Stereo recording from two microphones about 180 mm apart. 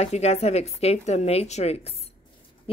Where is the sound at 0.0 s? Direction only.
35° left (ahead or behind).